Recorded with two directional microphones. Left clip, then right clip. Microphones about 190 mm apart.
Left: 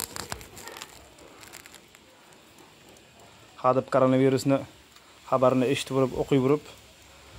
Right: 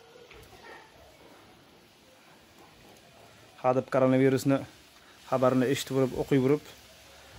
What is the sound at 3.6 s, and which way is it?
Speech, 10° right (ahead or behind).